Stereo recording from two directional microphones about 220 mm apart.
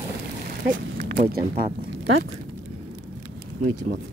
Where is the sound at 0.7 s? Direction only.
35° right (ahead or behind).